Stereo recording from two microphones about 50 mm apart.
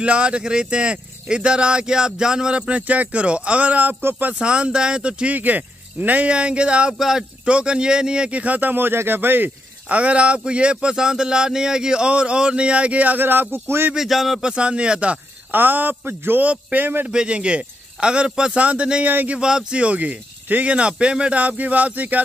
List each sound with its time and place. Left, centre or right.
0.0 s speech: right
4.0 s a man's voice: right
4.3 s speech: right
6.9 s speech: centre; by 9.5 s right
9.8 s speech: right
13.2 s speech: right
13.9 s a man's voice: centre
14.4 s speech: centre
15.5 s a man's voice: right
17.1 s speech: centre
19.0 s a man's voice: right
19.3 s speech: centre
19.8 s speech: right
21.4 s a man's voice: right